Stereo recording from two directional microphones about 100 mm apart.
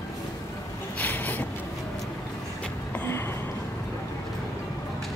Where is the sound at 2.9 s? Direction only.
20° left (ahead or behind).